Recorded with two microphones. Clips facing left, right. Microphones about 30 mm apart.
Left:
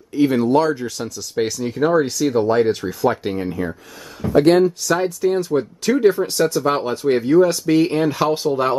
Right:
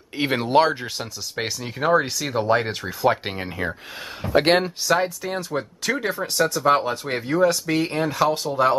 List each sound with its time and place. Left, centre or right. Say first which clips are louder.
0.1 s speech: left 4 dB; right; by 3.1 s centre
3.1 s speech: left 1 dB; right
4.8 s speech: left 3 dB; centre